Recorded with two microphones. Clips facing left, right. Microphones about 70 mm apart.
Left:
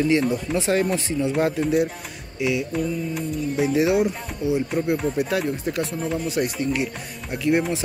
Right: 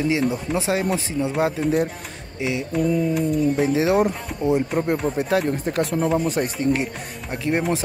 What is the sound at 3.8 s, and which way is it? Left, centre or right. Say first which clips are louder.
Speech: left 1 dB; right.